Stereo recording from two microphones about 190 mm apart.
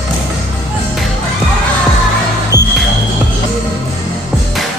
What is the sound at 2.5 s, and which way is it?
Music, 20° left (ahead or behind).